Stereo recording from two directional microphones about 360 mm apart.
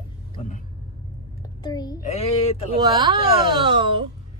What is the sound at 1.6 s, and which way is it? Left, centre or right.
A child's voice, centre.